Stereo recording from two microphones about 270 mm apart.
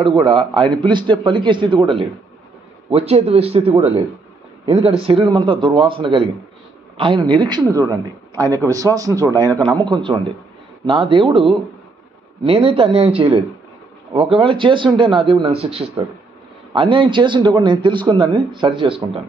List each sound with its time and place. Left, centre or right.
0.0 s a man's voice: centre